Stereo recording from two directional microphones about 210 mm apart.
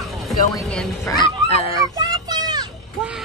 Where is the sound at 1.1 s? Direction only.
25° left (ahead or behind).